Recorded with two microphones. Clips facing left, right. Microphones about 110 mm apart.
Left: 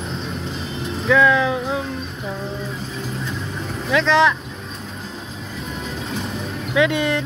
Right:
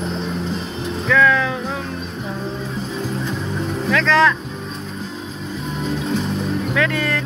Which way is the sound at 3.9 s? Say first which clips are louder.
Even; 20° left (ahead or behind).